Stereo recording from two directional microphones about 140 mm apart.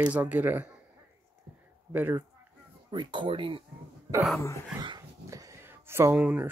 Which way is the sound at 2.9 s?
35° right (ahead or behind).